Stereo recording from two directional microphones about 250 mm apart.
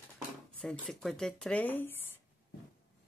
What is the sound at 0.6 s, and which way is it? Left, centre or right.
Speech, centre.